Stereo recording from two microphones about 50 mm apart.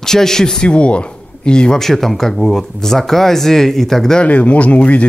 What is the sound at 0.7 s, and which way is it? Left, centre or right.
Speech, left.